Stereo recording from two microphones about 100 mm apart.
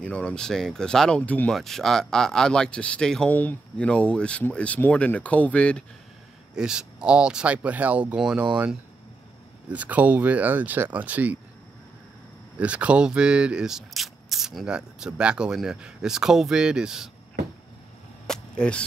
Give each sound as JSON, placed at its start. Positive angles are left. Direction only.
{"t": 0.0, "sound": "speech", "side_deg": 10}
{"t": 1.5, "sound": "speech", "side_deg": 5}
{"t": 6.5, "sound": "speech", "side_deg": -5}
{"t": 12.5, "sound": "speech", "side_deg": -15}
{"t": 18.2, "sound": "cap gun", "side_deg": 5}